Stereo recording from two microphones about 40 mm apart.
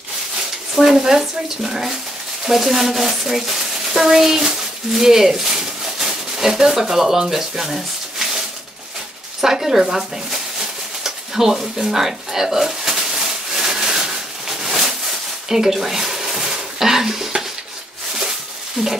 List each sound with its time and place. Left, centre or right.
0.7 s speech: centre
9.4 s speech: centre
11.1 s a sound: centre
18.8 s speech: centre